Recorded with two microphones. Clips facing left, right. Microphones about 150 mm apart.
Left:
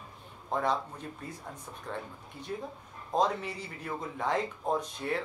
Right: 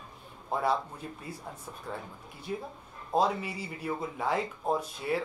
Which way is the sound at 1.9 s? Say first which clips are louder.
Left 1 dB; 10° right (ahead or behind).